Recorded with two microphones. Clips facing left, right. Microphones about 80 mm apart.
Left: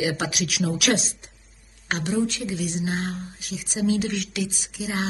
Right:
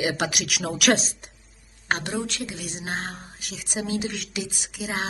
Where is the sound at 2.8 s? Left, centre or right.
Right.